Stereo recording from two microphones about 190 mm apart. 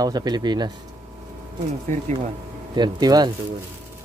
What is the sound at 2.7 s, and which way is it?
Speech, 20° right (ahead or behind).